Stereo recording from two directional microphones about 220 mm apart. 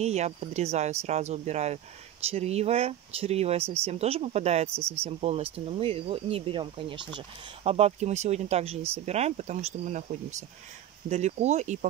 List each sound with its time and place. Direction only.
0.0 s speech: 30° right (ahead or behind)
4.6 s speech: 10° right (ahead or behind)
5.0 s speech: 30° right (ahead or behind)